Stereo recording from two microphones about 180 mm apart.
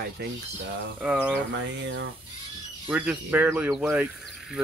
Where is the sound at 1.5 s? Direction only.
85° right.